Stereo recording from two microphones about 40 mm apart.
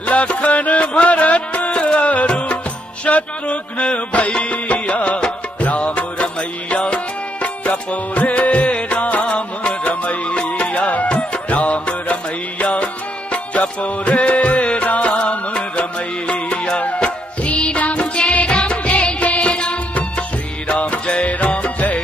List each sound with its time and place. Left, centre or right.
0.1 s music: left
3.1 s a sound: left
4.4 s music: left
9.2 s music: left